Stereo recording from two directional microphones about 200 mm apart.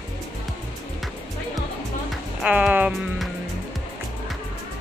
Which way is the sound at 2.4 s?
5° right (ahead or behind).